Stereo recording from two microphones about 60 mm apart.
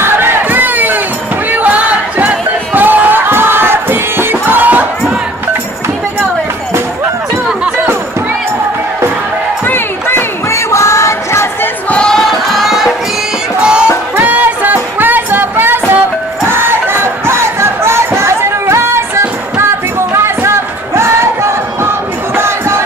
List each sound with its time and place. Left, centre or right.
0.0 s battle cry: right
1.5 s music: right
9.7 s a sound: left
10.5 s music: left
11.9 s choir: centre
13.6 s music: centre
14.1 s music: right
16.4 s crowd: right
20.1 s a sound: right
22.3 s battle cry: right